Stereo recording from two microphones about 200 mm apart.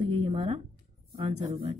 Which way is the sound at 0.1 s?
30° right (ahead or behind).